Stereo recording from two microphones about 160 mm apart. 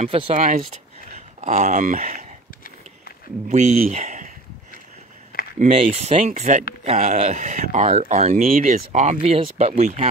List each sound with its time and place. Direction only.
0.0 s speech: 45° right (ahead or behind)
3.4 s speech: 45° right (ahead or behind)
5.6 s speech: 45° right (ahead or behind)
8.5 s speech: 55° right (ahead or behind)